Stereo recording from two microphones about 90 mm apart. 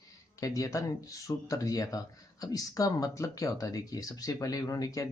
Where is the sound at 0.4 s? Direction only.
40° left (ahead or behind).